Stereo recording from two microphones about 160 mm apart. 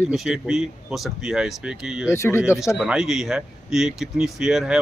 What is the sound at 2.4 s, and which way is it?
Speech, 5° right (ahead or behind).